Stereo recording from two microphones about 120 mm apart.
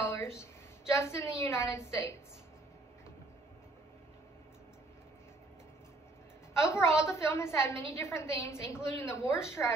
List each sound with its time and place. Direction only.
0.4 s a woman's voice: 25° left (ahead or behind)
6.5 s a woman's voice: 25° left (ahead or behind)
9.6 s a woman's voice: 15° left (ahead or behind)